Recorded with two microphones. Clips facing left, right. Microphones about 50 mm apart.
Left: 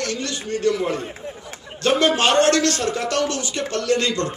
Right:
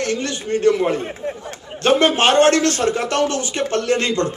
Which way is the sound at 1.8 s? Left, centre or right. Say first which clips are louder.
Right 3 dB; right.